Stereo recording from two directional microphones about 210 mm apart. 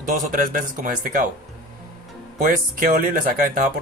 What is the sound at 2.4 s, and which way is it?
A man's voice, 40° right (ahead or behind).